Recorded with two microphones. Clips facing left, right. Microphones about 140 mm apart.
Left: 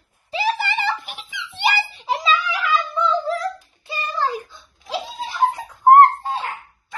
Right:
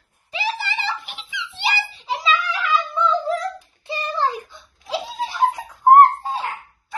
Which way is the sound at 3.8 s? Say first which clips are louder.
Right 1 dB; 20° right (ahead or behind).